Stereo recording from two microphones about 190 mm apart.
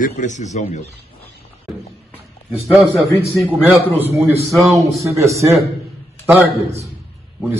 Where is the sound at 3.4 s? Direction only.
10° right (ahead or behind).